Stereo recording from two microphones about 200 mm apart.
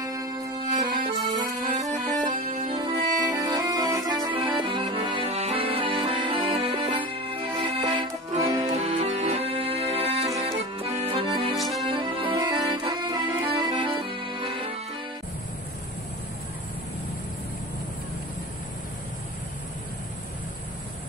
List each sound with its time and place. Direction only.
0.0 s music: 15° right (ahead or behind)
1.4 s music: 40° right (ahead or behind)
3.2 s accordion: 20° right (ahead or behind)
8.7 s accordion: 35° right (ahead or behind)
11.5 s music: centre (ahead or behind)
11.9 s accordion: 25° right (ahead or behind)